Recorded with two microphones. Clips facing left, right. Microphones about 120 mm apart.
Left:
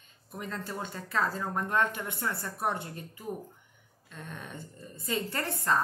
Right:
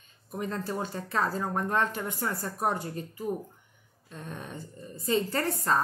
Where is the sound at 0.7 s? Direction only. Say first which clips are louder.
Right 5 dB; 30° right (ahead or behind).